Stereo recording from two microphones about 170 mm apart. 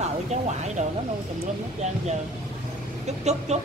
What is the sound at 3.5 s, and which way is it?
Speech, 40° right (ahead or behind).